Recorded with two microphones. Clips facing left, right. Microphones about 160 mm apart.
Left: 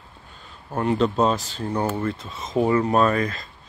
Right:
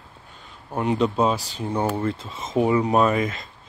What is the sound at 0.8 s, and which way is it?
Speech, 15° right (ahead or behind).